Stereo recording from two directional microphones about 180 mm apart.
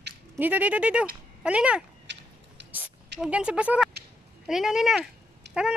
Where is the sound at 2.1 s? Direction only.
75° right (ahead or behind).